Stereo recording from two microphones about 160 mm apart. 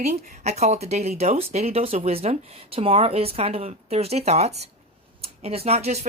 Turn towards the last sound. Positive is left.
turn(degrees=-40)  # may be behind; listen again after turning